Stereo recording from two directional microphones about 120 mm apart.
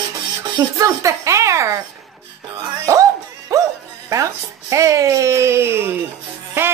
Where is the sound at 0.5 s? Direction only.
30° right (ahead or behind).